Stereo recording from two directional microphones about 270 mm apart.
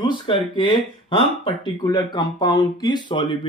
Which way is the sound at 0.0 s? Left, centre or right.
Centre.